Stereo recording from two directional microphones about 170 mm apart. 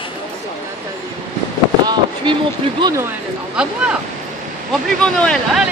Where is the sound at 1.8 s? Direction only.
25° right (ahead or behind).